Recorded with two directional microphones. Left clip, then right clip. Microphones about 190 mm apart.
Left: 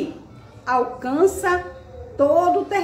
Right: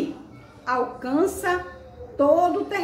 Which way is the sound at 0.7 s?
10° left (ahead or behind).